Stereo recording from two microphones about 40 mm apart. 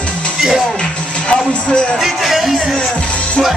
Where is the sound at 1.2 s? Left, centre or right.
Left.